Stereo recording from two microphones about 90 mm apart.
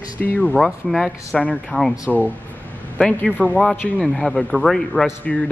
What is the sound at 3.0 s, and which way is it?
Speech, 10° left (ahead or behind).